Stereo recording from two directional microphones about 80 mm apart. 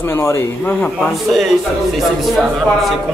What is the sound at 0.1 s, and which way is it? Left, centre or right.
Speech, left.